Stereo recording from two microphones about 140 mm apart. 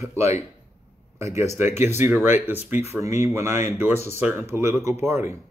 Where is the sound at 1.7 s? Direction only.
50° left (ahead or behind).